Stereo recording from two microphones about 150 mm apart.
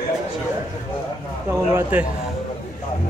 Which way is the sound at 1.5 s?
15° right (ahead or behind).